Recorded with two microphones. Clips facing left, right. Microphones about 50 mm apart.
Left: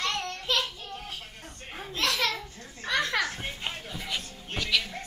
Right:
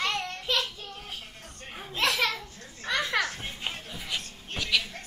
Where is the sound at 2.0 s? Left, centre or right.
Centre.